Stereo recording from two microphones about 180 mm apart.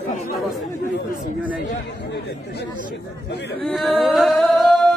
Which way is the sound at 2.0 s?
70° left (ahead or behind).